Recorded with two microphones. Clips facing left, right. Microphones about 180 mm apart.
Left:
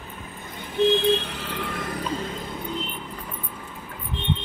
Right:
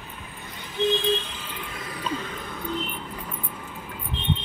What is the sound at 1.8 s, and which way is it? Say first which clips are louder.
Music: right 2 dB; 45° left (ahead or behind).